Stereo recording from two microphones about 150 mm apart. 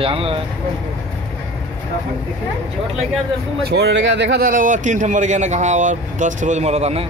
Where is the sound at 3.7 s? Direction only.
90° right; by 7.0 s 45° right (ahead or behind).